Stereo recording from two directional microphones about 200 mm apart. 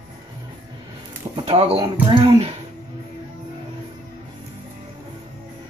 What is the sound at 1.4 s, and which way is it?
Speech, 30° right (ahead or behind).